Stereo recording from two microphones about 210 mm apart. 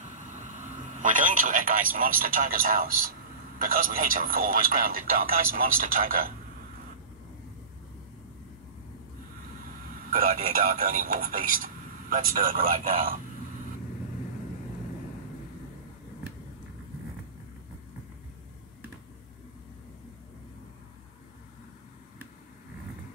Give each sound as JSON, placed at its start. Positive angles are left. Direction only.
{"t": 0.3, "sound": "speech", "side_deg": -35}
{"t": 10.1, "sound": "speech", "side_deg": -45}